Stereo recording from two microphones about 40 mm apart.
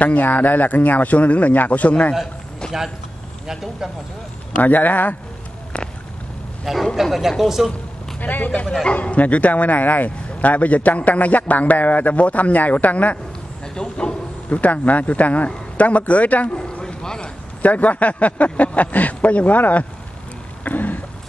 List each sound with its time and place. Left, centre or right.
0.0 s speech: left
2.6 s a sound: left
3.4 s speech: centre
4.6 s speech: left
6.6 s a man's voice: centre
8.2 s speech: left
8.5 s speech: left
13.7 s a sound: left
14.6 s speech: left
16.8 s a sound: centre
17.6 s speech: left
20.6 s a sound: left